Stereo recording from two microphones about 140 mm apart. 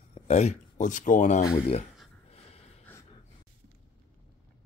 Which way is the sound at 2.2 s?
45° left (ahead or behind).